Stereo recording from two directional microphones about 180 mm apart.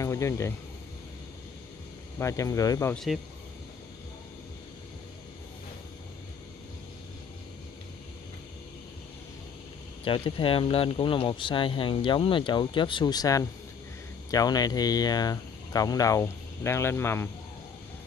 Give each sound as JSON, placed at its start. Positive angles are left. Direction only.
{"t": 0.0, "sound": "speech", "side_deg": 15}
{"t": 2.1, "sound": "speech", "side_deg": 15}
{"t": 2.9, "sound": "speech", "side_deg": 0}
{"t": 10.0, "sound": "speech", "side_deg": 30}